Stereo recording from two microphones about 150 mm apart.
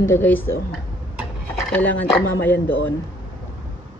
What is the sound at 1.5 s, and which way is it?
Speech, 10° left (ahead or behind).